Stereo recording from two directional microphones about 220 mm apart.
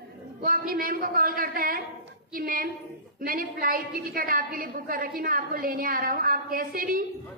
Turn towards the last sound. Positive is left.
turn(degrees=-40)  # may be behind; listen again after turning